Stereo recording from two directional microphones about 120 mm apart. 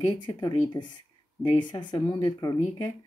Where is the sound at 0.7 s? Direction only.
40° left (ahead or behind).